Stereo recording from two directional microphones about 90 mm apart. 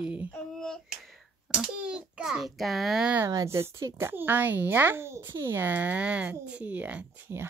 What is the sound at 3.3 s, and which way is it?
Speech, 35° right (ahead or behind).